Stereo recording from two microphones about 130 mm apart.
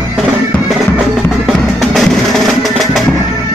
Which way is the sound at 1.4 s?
Centre (ahead or behind).